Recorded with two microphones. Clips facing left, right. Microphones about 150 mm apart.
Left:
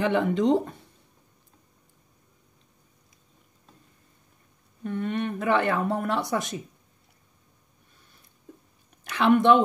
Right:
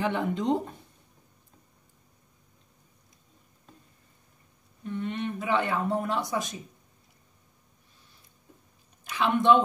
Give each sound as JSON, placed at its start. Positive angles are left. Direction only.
{"t": 0.0, "sound": "speech", "side_deg": 85}
{"t": 4.8, "sound": "speech", "side_deg": 55}
{"t": 9.0, "sound": "a woman's voice", "side_deg": 65}